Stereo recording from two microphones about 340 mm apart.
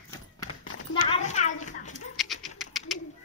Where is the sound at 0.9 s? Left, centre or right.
Centre.